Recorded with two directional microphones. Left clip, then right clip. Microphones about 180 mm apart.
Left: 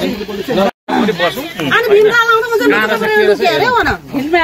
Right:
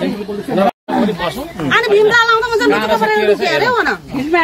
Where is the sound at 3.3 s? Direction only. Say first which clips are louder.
Left 2 dB; 35° left (ahead or behind).